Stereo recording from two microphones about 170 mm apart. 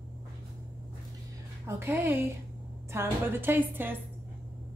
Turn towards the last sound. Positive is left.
turn(degrees=-10)  # may be behind; listen again after turning